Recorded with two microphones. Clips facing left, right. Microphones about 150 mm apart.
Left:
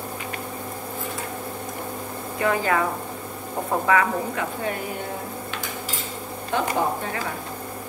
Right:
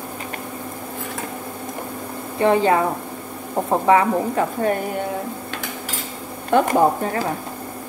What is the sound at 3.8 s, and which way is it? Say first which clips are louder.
Speech: right 5 dB; 30° right (ahead or behind).